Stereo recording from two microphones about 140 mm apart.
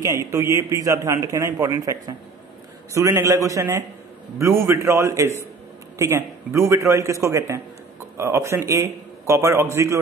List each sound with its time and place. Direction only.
0.0 s a man's voice: 20° right (ahead or behind)